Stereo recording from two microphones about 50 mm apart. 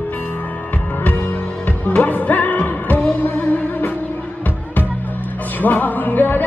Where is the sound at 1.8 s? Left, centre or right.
Left.